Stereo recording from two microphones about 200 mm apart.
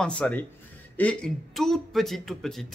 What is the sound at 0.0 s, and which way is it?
Speech, 5° left (ahead or behind).